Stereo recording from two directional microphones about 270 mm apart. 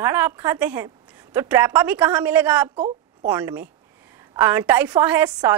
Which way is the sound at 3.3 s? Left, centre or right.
Centre.